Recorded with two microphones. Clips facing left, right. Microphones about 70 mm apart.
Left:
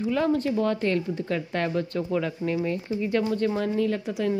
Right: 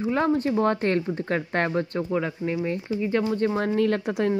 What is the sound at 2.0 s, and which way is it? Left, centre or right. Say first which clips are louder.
Speech: even; right.